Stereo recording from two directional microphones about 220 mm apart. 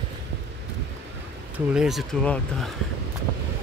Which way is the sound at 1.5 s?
5° right (ahead or behind).